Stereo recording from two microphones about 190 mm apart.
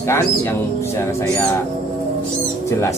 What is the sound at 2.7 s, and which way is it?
Speech, 15° left (ahead or behind).